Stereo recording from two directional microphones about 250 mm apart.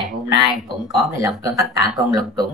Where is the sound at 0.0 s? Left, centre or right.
Centre.